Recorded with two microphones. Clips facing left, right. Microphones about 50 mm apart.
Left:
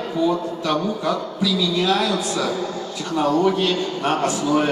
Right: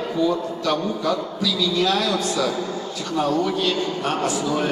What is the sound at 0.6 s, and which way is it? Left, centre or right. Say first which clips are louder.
Speech: even; left.